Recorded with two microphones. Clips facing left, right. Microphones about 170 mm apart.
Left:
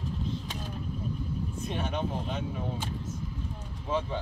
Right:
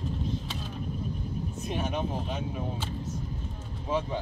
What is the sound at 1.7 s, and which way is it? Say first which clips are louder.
Speech: right 2 dB; 10° right (ahead or behind).